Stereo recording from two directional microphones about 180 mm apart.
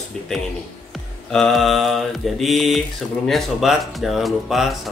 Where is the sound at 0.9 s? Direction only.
Centre (ahead or behind).